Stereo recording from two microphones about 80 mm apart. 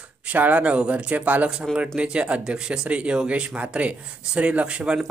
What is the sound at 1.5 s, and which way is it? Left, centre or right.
Speech, centre.